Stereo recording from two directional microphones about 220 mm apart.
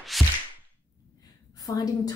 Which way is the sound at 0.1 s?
Centre (ahead or behind).